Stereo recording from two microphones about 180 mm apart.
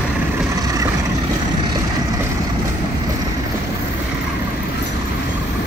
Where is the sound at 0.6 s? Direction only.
20° right (ahead or behind).